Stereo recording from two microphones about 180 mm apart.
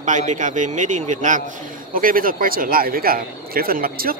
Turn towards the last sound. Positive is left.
turn(degrees=-55)  # may be behind; listen again after turning